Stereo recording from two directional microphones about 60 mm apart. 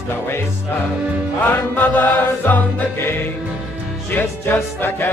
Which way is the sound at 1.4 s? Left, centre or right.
Left.